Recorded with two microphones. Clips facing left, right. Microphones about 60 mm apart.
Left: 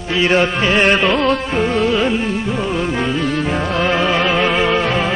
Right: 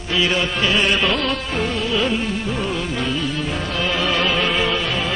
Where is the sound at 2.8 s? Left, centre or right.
Left.